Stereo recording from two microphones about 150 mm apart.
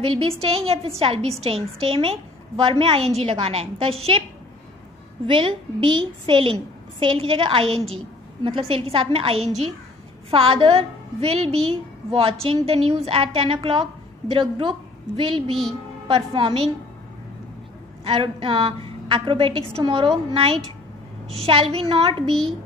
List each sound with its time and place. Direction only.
0.0 s a woman's voice: 40° right (ahead or behind)
5.2 s a woman's voice: 35° right (ahead or behind)
18.0 s a woman's voice: 35° right (ahead or behind)